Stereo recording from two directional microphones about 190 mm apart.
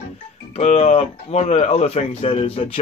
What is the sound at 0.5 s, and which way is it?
Speech, 35° left (ahead or behind).